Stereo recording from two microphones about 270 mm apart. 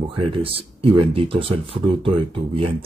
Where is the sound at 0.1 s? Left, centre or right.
Centre.